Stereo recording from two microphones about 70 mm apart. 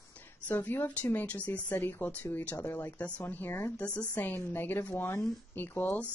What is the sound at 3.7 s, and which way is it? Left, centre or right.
Speech, centre.